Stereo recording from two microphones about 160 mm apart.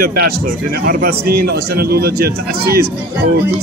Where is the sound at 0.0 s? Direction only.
70° right (ahead or behind).